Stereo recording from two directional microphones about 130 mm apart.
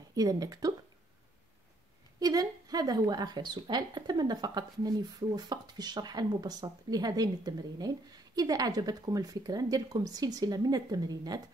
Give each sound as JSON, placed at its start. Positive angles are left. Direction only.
{"t": 0.1, "sound": "a woman's voice", "side_deg": -30}
{"t": 2.1, "sound": "a woman's voice", "side_deg": -30}